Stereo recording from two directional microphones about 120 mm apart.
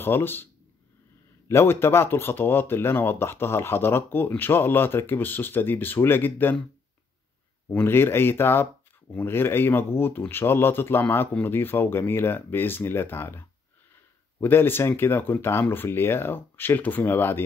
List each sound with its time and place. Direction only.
0.0 s speech: 20° left (ahead or behind)
1.5 s speech: 20° left (ahead or behind)
7.7 s speech: 20° left (ahead or behind)